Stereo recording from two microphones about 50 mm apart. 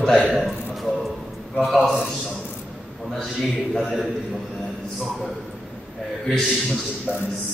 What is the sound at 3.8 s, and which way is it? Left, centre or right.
Speech, centre.